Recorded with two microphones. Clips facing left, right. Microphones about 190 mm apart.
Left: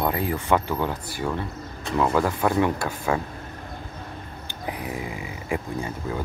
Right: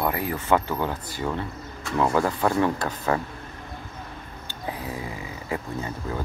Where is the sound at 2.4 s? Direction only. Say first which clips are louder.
Left 1 dB; 15° left (ahead or behind).